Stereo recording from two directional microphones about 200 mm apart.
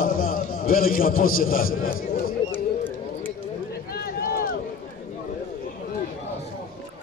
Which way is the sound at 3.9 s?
50° left (ahead or behind).